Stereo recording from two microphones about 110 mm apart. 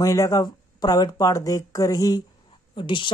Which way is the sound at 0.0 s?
30° left (ahead or behind).